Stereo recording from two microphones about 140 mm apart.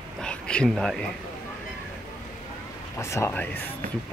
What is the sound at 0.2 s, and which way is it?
Speech, 5° left (ahead or behind).